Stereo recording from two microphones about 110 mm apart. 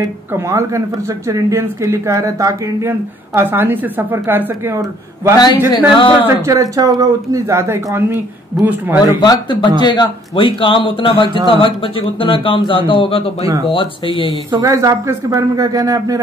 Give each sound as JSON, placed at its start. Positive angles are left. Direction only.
{"t": 0.0, "sound": "speech", "side_deg": -25}
{"t": 3.3, "sound": "speech", "side_deg": -20}
{"t": 5.9, "sound": "speech", "side_deg": 50}
{"t": 6.2, "sound": "speech", "side_deg": -30}
{"t": 9.2, "sound": "speech", "side_deg": 40}
{"t": 14.5, "sound": "a man's voice", "side_deg": -30}